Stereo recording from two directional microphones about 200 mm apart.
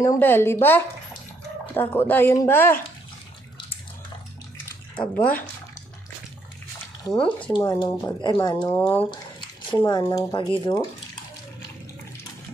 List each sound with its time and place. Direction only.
0.0 s speech: 15° left (ahead or behind)
4.9 s speech: 10° left (ahead or behind)
7.1 s speech: 5° left (ahead or behind)
7.4 s speech: 25° left (ahead or behind)
9.1 s drip: 25° left (ahead or behind)
9.8 s speech: 20° left (ahead or behind)